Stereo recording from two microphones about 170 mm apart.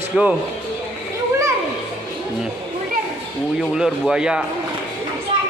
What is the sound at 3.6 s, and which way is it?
Speech, 5° right (ahead or behind).